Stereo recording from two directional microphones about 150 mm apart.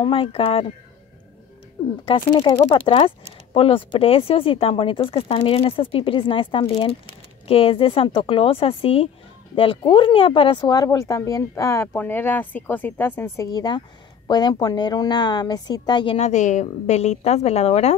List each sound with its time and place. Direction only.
0.0 s speech: 35° left (ahead or behind)
2.0 s speech: 30° left (ahead or behind); by 13.5 s 15° left (ahead or behind)
13.5 s speech: 25° left (ahead or behind)
16.2 s a woman's voice: 50° left (ahead or behind)